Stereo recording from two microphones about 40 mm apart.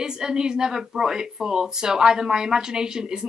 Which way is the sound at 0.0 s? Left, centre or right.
Centre.